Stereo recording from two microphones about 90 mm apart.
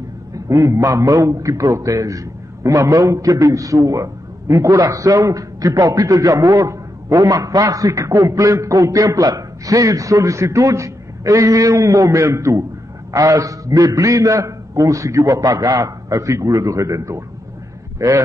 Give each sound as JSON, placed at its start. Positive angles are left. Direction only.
{"t": 0.3, "sound": "a man's voice", "side_deg": -35}